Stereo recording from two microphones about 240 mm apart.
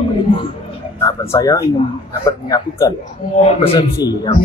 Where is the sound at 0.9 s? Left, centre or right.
Centre.